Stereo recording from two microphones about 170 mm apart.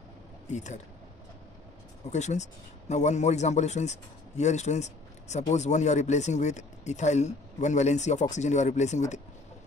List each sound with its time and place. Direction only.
0.5 s a man's voice: 45° left (ahead or behind)
2.0 s a man's voice: 45° left (ahead or behind)